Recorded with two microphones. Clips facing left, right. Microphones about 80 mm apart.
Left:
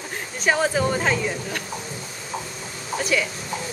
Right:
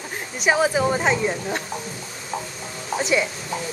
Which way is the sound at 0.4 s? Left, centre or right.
Centre.